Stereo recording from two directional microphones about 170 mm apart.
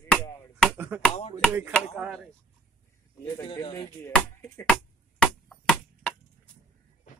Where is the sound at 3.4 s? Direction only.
30° left (ahead or behind).